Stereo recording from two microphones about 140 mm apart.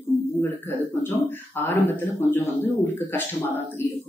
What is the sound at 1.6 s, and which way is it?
Speech, 15° left (ahead or behind).